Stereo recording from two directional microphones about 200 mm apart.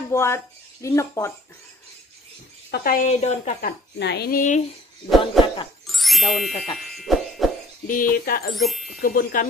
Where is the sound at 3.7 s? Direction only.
55° left (ahead or behind).